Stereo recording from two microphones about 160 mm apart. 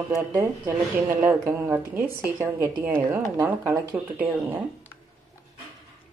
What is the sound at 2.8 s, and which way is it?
Speech, 10° right (ahead or behind).